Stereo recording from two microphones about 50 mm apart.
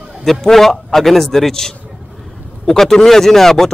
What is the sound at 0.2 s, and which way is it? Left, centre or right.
A man's voice, centre.